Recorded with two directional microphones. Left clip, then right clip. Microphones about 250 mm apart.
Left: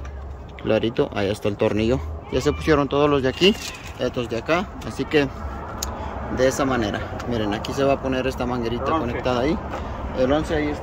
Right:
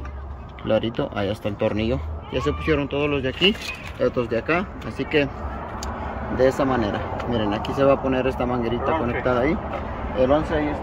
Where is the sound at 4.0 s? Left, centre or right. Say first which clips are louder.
Right 3 dB; centre.